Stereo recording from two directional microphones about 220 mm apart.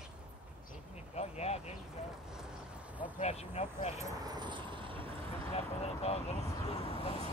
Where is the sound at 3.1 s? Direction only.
30° left (ahead or behind).